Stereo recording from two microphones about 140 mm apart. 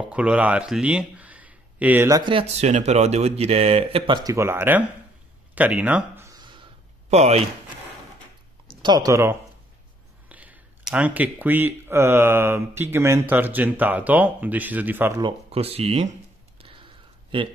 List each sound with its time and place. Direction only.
0.0 s speech: 10° right (ahead or behind)
2.0 s speech: 25° right (ahead or behind)
2.3 s speech: 50° right (ahead or behind)
4.2 s speech: 20° right (ahead or behind)
6.2 s a sound: 30° right (ahead or behind)
7.1 s speech: 50° right (ahead or behind)
8.6 s speech: 30° right (ahead or behind); by 15.2 s 15° right (ahead or behind)
15.2 s speech: 45° right (ahead or behind)
16.5 s a sound: 40° right (ahead or behind)